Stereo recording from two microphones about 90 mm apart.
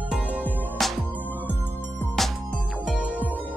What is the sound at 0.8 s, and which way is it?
Music, 5° left (ahead or behind).